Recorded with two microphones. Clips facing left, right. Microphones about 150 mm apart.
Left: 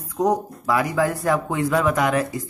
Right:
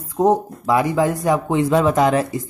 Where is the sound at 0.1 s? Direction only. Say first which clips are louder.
Right 4 dB; 25° right (ahead or behind).